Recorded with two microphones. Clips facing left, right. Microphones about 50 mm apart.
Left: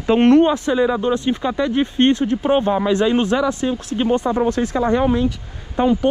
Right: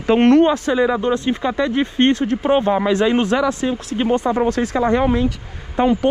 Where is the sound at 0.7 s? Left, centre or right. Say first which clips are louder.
Even; right.